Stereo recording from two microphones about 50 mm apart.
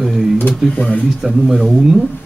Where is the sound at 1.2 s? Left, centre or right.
Centre.